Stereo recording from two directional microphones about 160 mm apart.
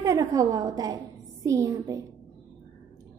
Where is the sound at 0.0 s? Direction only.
20° right (ahead or behind).